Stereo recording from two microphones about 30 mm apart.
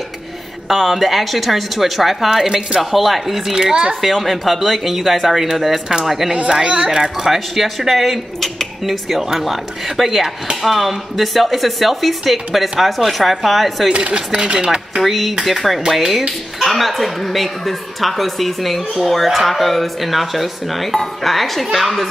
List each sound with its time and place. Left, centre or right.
0.7 s a woman's voice: centre
3.5 s speech: right
4.0 s a woman's voice: centre
7.3 s a woman's voice: centre
13.9 s chopping: right
14.3 s speech: right
15.0 s a woman's voice: centre